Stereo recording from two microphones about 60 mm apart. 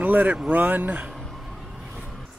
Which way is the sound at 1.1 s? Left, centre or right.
Centre.